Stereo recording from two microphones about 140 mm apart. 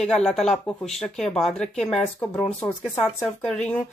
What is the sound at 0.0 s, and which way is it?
Speech, 5° left (ahead or behind).